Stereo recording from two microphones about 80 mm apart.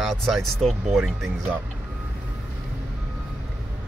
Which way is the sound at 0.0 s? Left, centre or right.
Centre.